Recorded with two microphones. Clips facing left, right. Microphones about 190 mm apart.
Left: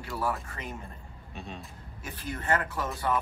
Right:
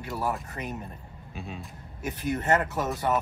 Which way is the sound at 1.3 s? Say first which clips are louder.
Right 2 dB; 5° right (ahead or behind).